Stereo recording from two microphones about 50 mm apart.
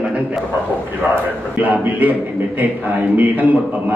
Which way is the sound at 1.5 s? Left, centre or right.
Right.